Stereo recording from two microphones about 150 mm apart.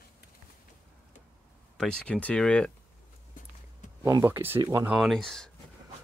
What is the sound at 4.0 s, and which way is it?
Speech, 15° right (ahead or behind).